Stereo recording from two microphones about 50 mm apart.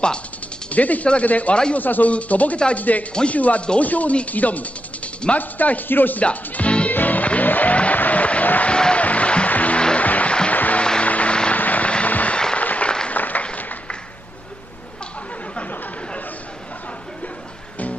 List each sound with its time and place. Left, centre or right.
0.7 s speech: left
6.2 s music: left
6.9 s music: left
8.7 s a sound: centre
9.0 s music: left
10.5 s music: left
10.8 s vehicle: left
11.9 s fireworks: left
12.5 s applause: left